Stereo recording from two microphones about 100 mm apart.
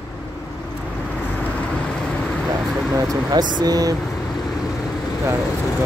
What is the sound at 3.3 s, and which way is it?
Speech, 40° right (ahead or behind).